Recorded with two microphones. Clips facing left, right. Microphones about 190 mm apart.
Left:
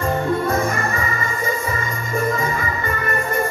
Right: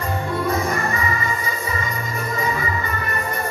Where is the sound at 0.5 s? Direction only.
50° left (ahead or behind).